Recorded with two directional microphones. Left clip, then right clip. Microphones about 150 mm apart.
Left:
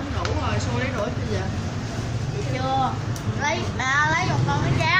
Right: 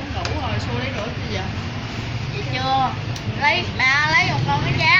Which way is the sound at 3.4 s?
20° left (ahead or behind).